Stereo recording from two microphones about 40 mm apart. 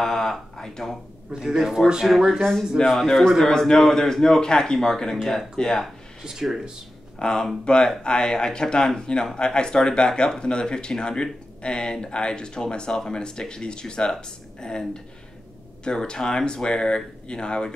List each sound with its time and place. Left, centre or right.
0.0 s a sound: centre
1.3 s a man's voice: centre
2.0 s a man's voice: centre
6.2 s a man's voice: centre
7.2 s speech: centre